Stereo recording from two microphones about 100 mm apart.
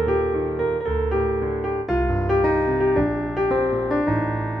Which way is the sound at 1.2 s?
50° right (ahead or behind).